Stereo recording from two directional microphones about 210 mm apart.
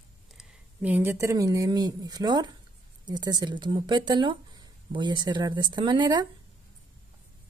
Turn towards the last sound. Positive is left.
turn(degrees=-20)  # may be behind; listen again after turning